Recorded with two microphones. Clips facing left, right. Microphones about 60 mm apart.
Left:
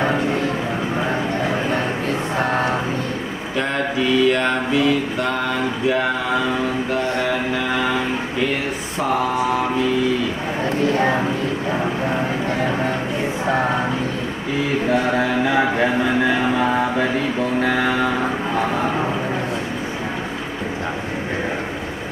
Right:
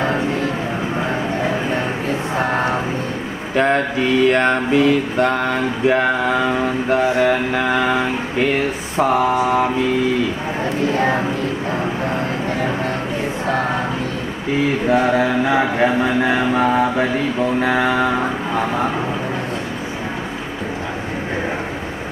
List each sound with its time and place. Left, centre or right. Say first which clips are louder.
1.7 s music: right 1 dB; centre
3.5 s music: right 5 dB; right
5.9 s speech: right 4 dB; right
10.6 s a sound: even; centre
11.7 s vehicle: even; centre
13.5 s music: left 1 dB; centre
14.9 s a sound: right 4 dB; centre
16.3 s mantra: right 2 dB; right
17.6 s a sound: right 2 dB; centre